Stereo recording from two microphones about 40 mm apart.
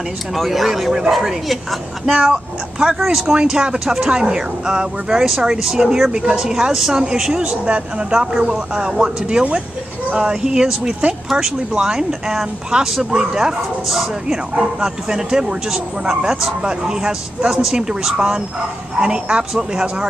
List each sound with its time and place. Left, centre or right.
0.4 s a woman's voice: centre
16.6 s speech: right